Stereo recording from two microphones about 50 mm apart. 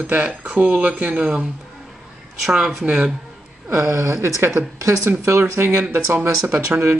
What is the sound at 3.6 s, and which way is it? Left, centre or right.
Speech, right.